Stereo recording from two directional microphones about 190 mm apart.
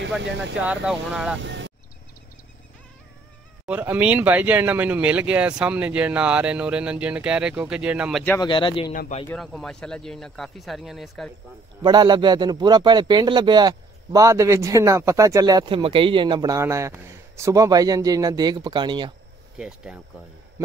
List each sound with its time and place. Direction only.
0.2 s speech: 70° right (ahead or behind)
0.6 s speech: 5° right (ahead or behind)
1.4 s vehicle: 70° right (ahead or behind)
3.6 s speech: 10° right (ahead or behind)
8.4 s speech: 25° left (ahead or behind)
9.3 s speech: centre (ahead or behind)
11.8 s a man's voice: 20° right (ahead or behind)
19.6 s speech: 5° right (ahead or behind)